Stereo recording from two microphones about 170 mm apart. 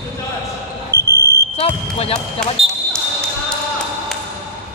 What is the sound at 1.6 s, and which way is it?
Basketball bounce, 35° left (ahead or behind).